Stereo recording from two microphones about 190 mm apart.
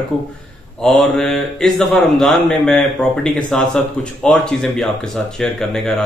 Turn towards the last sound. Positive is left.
turn(degrees=5)  # may be behind; listen again after turning